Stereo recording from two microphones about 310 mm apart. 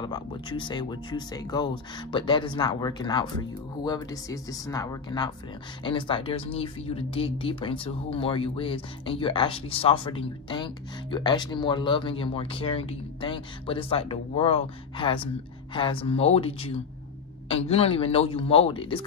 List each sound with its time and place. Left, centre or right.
0.0 s speech: centre